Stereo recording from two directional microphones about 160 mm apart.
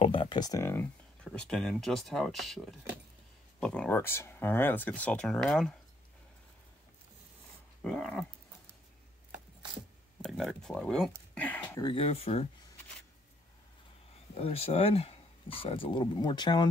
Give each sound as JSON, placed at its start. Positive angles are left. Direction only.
{"t": 0.0, "sound": "speech", "side_deg": 30}
{"t": 1.2, "sound": "speech", "side_deg": 5}
{"t": 7.8, "sound": "dog", "side_deg": 5}
{"t": 10.2, "sound": "a sound", "side_deg": 0}
{"t": 11.8, "sound": "speech", "side_deg": 35}
{"t": 14.3, "sound": "speech", "side_deg": 40}